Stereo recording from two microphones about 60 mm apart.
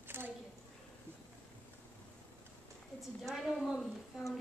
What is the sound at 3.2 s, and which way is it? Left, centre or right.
A woman's voice, centre.